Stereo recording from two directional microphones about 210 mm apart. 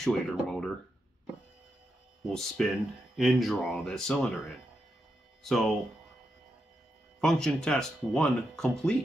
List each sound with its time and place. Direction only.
0.0 s speech: centre (ahead or behind)
2.2 s speech: centre (ahead or behind)
5.4 s speech: centre (ahead or behind)
7.2 s speech: 5° left (ahead or behind)